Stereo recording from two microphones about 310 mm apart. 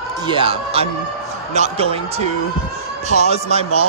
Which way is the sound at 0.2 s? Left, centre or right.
Centre.